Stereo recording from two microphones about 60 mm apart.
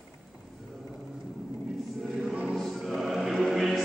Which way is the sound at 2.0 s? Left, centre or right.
Centre.